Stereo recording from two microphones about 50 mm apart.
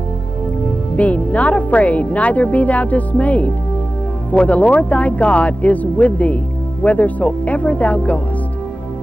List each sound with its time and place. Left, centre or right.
0.9 s speech: left